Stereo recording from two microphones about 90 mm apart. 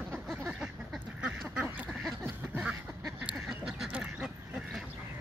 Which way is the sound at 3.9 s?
10° right (ahead or behind).